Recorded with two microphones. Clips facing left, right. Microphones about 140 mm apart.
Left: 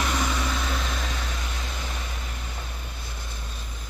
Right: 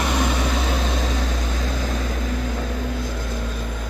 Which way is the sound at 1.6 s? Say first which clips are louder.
Right 10 dB; 90° right.